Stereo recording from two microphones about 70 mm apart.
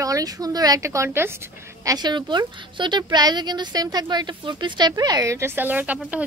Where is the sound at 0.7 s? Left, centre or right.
Right.